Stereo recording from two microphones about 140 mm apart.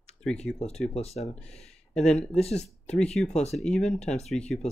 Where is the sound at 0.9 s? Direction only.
50° left (ahead or behind).